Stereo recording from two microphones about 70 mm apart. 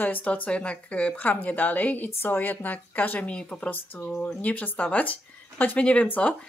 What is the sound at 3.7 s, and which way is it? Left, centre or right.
A woman's voice, left.